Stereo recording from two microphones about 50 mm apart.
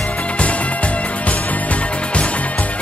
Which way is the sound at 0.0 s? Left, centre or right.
Left.